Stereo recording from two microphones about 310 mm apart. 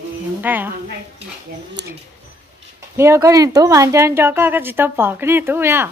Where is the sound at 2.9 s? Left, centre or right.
Centre.